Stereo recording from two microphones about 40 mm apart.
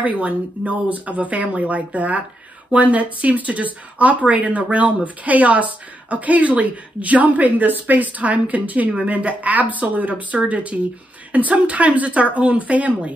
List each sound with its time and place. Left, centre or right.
0.0 s speech: right